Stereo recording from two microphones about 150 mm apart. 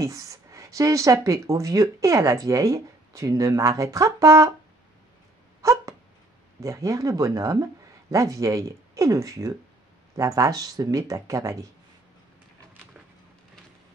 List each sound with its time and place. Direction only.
0.0 s speech: 20° right (ahead or behind)
5.6 s dog: 20° right (ahead or behind)
6.6 s speech: 20° right (ahead or behind)